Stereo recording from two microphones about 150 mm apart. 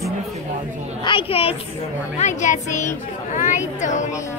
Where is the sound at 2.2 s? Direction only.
55° left (ahead or behind).